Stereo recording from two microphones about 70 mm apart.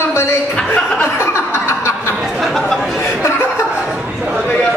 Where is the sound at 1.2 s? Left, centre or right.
Left.